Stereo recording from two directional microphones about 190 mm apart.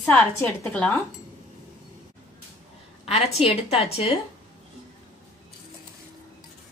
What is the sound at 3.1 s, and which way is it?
A woman's voice, 30° left (ahead or behind).